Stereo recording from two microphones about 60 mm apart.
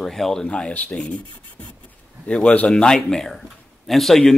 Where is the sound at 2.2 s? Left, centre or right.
Centre.